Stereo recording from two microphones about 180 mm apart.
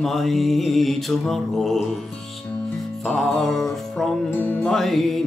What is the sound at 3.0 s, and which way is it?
Speech, centre (ahead or behind).